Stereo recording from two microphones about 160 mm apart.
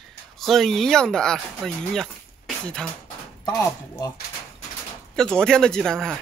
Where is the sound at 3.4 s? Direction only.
25° left (ahead or behind).